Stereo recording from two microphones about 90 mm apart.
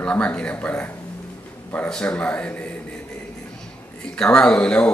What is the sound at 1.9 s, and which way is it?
Speech, 10° left (ahead or behind).